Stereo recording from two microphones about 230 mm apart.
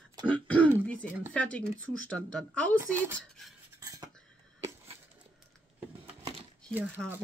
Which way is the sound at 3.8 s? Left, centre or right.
Centre.